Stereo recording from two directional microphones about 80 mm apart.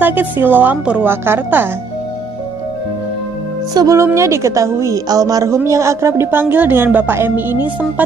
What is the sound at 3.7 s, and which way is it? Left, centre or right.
Speech, right.